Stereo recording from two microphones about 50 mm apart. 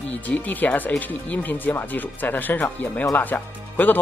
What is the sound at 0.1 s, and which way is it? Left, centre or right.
Speech, left.